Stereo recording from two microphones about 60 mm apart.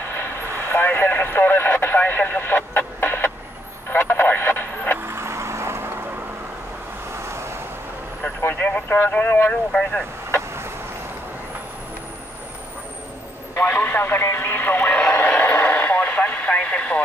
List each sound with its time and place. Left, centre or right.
0.1 s vehicle: left
3.9 s radio: left
5.0 s vehicle: right
7.1 s vehicle: right
8.4 s vehicle: left
8.6 s speech: left
9.5 s speech: left
13.7 s radio: left
14.9 s vehicle: centre
15.2 s a sound: left
15.6 s radio: left